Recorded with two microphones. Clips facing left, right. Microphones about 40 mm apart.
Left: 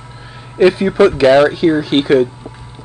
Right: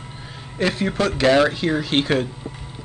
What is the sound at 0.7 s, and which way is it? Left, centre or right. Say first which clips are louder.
Speech: left 10 dB; centre.